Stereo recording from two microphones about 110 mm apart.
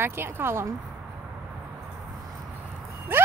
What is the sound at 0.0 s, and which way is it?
Speech, 20° right (ahead or behind).